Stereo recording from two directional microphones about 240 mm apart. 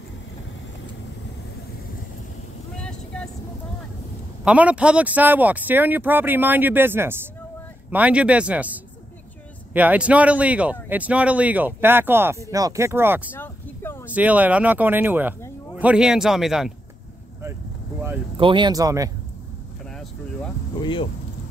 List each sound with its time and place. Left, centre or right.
2.8 s vehicle: centre
4.5 s speech: centre
13.3 s a sound: centre
14.1 s speech: centre
18.4 s speech: centre
20.8 s speech: left